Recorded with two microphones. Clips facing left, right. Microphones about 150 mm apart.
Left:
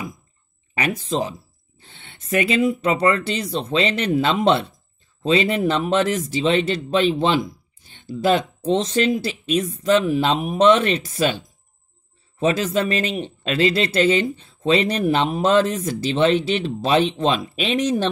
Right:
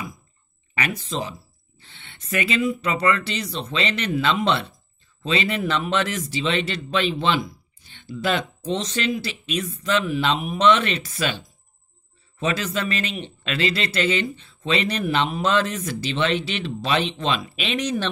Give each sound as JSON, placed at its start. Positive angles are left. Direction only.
{"t": 0.7, "sound": "speech", "side_deg": 45}
{"t": 1.8, "sound": "a sound", "side_deg": 45}
{"t": 2.3, "sound": "speech", "side_deg": 50}